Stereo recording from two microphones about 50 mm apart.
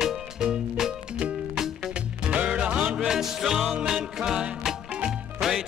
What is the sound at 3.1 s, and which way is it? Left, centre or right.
Music, centre.